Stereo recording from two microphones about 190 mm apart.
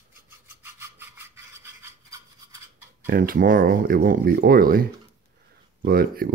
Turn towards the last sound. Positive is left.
turn(degrees=-50)  # may be behind; listen again after turning